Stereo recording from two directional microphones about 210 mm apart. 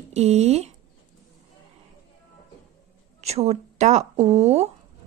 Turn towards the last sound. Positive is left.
turn(degrees=-30)  # may be behind; listen again after turning